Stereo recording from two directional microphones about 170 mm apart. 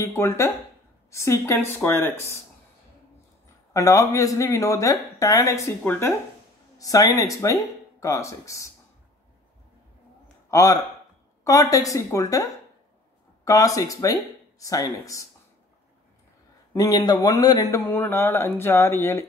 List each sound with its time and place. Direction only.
0.0 s speech: 15° left (ahead or behind)
3.7 s speech: 20° left (ahead or behind)
10.5 s a man's voice: 20° left (ahead or behind)
13.5 s speech: 20° left (ahead or behind)
16.7 s speech: 20° left (ahead or behind)